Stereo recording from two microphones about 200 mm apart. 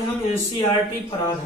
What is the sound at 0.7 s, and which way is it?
Speech, 25° left (ahead or behind).